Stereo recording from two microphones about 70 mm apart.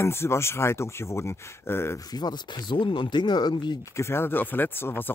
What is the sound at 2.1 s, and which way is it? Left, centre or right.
Speech, left.